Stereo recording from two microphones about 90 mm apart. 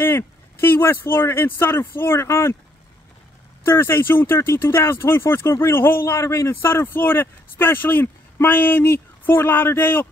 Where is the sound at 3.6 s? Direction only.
25° left (ahead or behind).